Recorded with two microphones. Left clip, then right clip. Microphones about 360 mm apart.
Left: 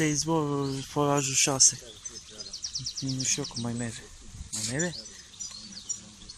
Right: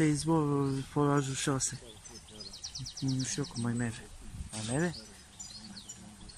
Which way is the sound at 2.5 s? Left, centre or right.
Centre.